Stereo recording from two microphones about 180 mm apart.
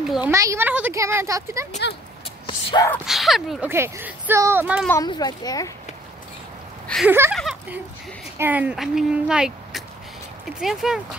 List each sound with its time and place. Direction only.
0.0 s speech: centre (ahead or behind)
0.3 s speech: 15° right (ahead or behind)
2.4 s a sound: 25° left (ahead or behind)
3.1 s speech: centre (ahead or behind)
3.7 s speech: 15° right (ahead or behind)
5.0 s a child's voice: 20° left (ahead or behind)
7.1 s speech: 10° right (ahead or behind)